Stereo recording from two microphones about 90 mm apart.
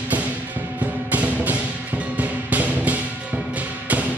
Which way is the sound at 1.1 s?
15° right (ahead or behind).